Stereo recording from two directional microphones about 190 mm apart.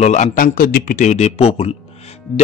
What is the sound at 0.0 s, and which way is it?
A man's voice, 40° left (ahead or behind).